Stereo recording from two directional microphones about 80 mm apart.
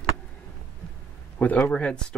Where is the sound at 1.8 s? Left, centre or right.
Centre.